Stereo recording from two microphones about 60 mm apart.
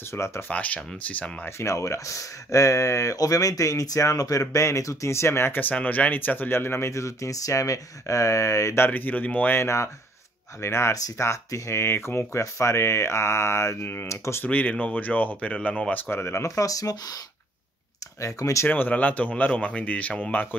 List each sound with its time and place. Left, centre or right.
0.1 s speech: left
0.5 s speech: left
1.6 s speech: left
5.6 s speech: left
6.9 s speech: left
8.7 s speech: left
9.5 s speech: left
11.8 s speech: left
12.4 s speech: left
14.4 s speech: left
15.9 s speech: left
16.4 s speech: left
18.2 s speech: left
18.7 s speech: left